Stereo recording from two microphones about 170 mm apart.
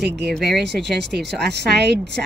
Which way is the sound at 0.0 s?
80° right.